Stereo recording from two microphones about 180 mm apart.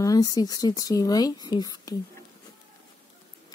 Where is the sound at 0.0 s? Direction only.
20° left (ahead or behind).